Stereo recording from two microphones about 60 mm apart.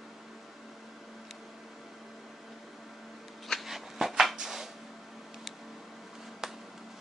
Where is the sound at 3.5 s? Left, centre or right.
Centre.